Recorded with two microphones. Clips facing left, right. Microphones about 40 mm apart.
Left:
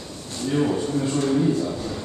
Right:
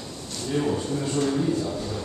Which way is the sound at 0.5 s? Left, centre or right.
Centre.